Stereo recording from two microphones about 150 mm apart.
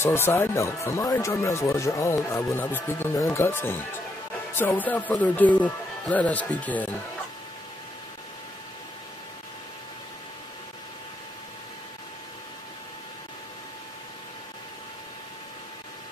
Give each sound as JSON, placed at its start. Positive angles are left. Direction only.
{"t": 0.0, "sound": "speech", "side_deg": 15}